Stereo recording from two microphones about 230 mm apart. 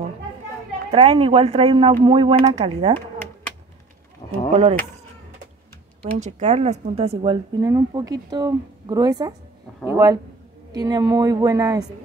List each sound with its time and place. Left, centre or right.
0.9 s a woman's voice: right
4.5 s speech: right
6.0 s a woman's voice: right